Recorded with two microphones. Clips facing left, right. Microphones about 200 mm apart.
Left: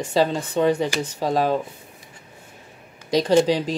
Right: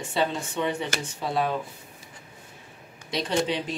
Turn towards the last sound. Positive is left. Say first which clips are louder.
# left 9 dB
turn(degrees=35)  # may be behind; listen again after turning